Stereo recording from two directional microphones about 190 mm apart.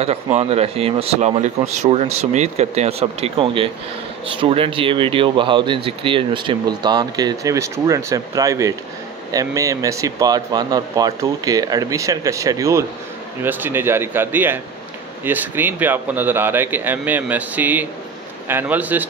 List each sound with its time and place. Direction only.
0.0 s speech: 35° right (ahead or behind); by 19.0 s 10° right (ahead or behind)